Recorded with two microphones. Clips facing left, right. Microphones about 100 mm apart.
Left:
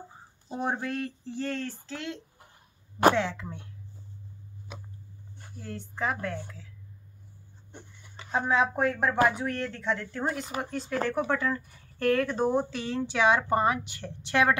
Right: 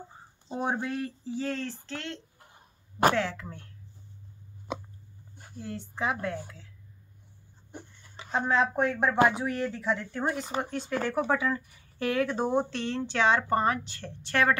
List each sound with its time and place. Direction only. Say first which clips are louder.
0.6 s speech: even; 5° right (ahead or behind)
3.1 s speech: left 6 dB; 20° left (ahead or behind)
5.6 s speech: even; 5° right (ahead or behind)
8.2 s speech: even; 5° left (ahead or behind)